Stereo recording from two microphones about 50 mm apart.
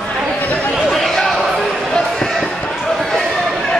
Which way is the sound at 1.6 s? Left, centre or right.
Centre.